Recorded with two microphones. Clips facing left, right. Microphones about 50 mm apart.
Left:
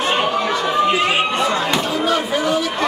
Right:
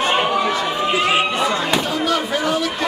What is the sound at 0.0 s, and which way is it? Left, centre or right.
Chatter, centre.